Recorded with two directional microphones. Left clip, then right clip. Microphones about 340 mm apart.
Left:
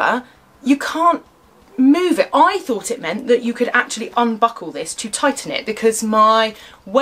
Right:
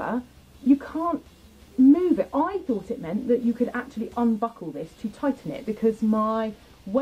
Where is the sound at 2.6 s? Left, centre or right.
Centre.